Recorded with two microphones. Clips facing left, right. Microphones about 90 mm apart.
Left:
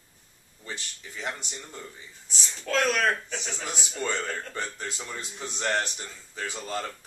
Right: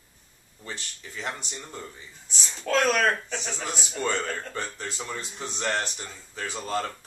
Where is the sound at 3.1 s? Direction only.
20° right (ahead or behind).